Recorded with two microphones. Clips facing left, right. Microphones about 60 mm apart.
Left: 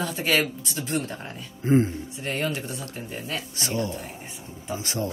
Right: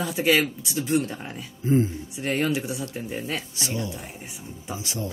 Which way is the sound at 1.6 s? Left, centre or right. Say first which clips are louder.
Left 1 dB; left.